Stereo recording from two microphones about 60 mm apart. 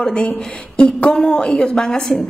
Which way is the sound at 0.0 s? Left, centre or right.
Centre.